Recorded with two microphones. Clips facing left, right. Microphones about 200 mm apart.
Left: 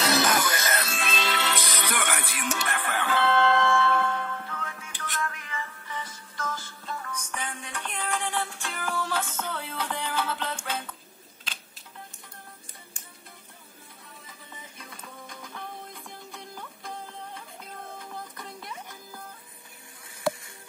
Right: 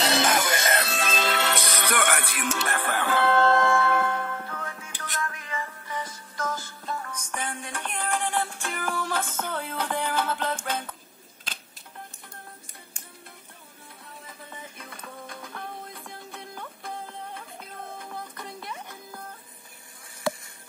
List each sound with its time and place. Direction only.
0.0 s music: 25° right (ahead or behind); by 2.4 s 60° right (ahead or behind)
2.7 s music: 40° right (ahead or behind)
16.3 s music: 60° right (ahead or behind)